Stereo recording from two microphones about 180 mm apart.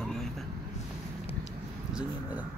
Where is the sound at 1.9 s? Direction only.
10° right (ahead or behind).